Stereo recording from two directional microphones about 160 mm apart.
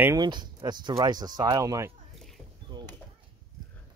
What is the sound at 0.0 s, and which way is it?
Speech, 20° right (ahead or behind).